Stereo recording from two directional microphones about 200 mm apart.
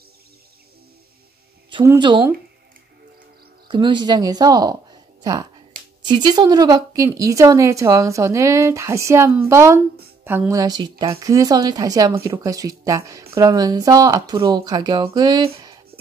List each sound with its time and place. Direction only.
2.0 s speech: 25° right (ahead or behind)
3.6 s speech: 25° right (ahead or behind)